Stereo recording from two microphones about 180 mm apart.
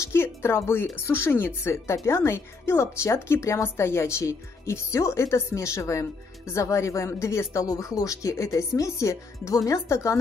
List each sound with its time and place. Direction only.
0.0 s a woman's voice: 15° left (ahead or behind)